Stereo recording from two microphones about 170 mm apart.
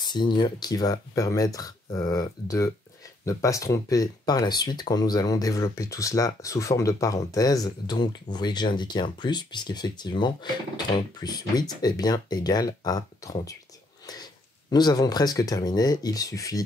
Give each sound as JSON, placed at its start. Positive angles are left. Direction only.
{"t": 0.0, "sound": "speech", "side_deg": 25}